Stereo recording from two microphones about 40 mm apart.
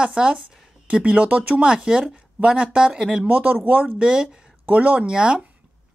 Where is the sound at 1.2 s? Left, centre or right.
Right.